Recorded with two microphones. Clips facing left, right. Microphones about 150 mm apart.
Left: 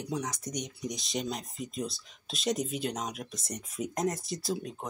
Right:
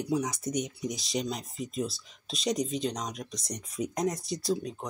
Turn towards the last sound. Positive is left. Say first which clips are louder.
# right 3 dB
turn(degrees=5)  # may be behind; listen again after turning